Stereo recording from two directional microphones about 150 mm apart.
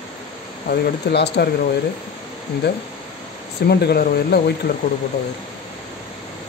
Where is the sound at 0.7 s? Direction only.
90° left.